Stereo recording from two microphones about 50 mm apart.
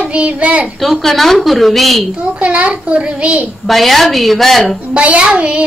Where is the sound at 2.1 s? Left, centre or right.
Right.